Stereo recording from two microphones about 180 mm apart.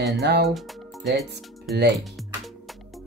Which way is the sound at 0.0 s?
70° right (ahead or behind).